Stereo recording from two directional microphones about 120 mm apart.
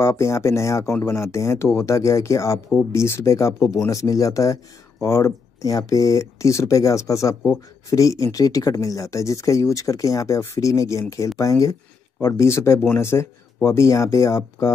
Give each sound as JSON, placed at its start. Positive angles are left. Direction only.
{"t": 0.0, "sound": "speech", "side_deg": 25}